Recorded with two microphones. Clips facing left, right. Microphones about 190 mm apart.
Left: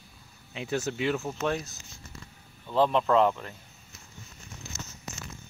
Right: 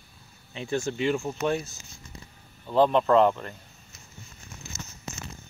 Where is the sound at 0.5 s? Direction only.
5° left (ahead or behind).